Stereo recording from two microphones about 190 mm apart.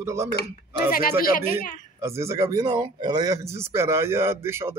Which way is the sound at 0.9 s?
50° left (ahead or behind).